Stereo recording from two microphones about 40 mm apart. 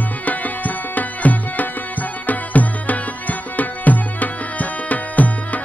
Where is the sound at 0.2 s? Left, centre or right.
Left.